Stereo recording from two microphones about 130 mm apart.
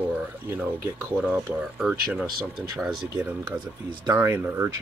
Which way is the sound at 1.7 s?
5° right (ahead or behind).